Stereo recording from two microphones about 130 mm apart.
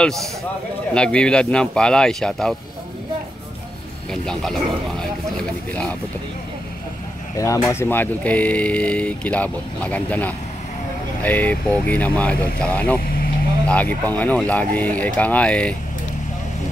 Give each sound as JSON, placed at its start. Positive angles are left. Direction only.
{"t": 0.0, "sound": "speech", "side_deg": 0}
{"t": 4.1, "sound": "speech", "side_deg": 5}
{"t": 5.7, "sound": "speech", "side_deg": 10}
{"t": 7.3, "sound": "speech", "side_deg": 25}